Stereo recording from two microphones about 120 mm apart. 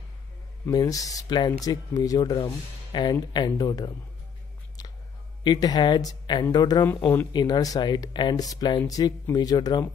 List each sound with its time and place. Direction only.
0.7 s speech: 30° left (ahead or behind)
5.4 s speech: 35° left (ahead or behind)
6.9 s speech: 20° left (ahead or behind)
7.3 s speech: 35° left (ahead or behind)